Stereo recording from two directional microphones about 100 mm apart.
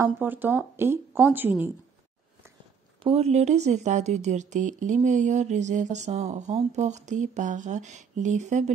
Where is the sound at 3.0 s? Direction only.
90° right.